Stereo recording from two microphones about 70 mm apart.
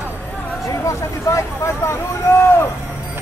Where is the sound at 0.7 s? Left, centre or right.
Left.